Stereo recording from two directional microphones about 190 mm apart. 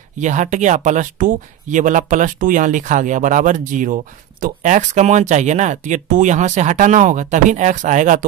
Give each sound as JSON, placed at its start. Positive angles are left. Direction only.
{"t": 0.2, "sound": "speech", "side_deg": -40}